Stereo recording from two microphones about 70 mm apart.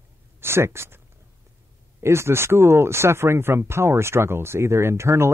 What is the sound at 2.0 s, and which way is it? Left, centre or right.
Speech, right.